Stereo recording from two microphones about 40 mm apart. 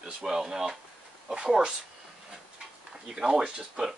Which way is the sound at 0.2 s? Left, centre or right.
Centre.